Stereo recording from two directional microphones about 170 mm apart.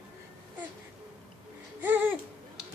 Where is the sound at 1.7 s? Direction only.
10° right (ahead or behind).